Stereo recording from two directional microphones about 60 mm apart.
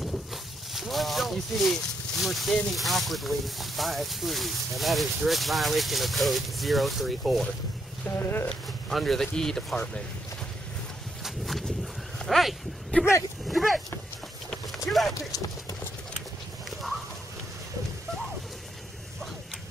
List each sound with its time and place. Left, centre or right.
0.0 s a sound: centre
2.7 s speech: centre
8.1 s speech: left
8.8 s speech: centre
11.2 s a sound: centre
12.2 s speech: centre
12.9 s speech: left
13.5 s speech: centre
14.9 s clip-clop: centre